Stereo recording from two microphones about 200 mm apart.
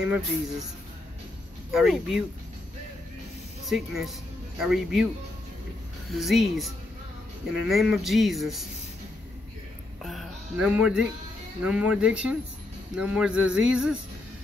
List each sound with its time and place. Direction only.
0.0 s speech: 5° right (ahead or behind)
1.7 s speech: centre (ahead or behind)
3.6 s speech: centre (ahead or behind)
6.1 s speech: centre (ahead or behind)
10.0 s music: 5° right (ahead or behind)
11.6 s speech: 5° right (ahead or behind)